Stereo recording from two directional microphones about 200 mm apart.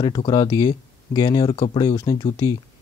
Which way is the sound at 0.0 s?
20° left (ahead or behind).